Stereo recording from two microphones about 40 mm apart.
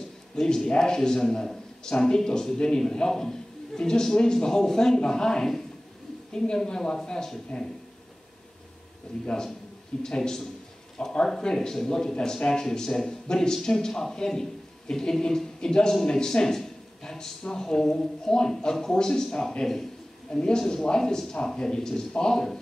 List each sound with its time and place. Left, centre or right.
0.4 s a man's voice: centre
9.2 s a man's voice: centre
20.2 s a man's voice: left